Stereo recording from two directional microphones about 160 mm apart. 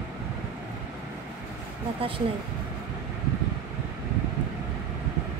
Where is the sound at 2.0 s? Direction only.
35° right (ahead or behind).